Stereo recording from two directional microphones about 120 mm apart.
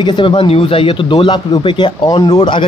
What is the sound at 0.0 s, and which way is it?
Speech, 40° left (ahead or behind).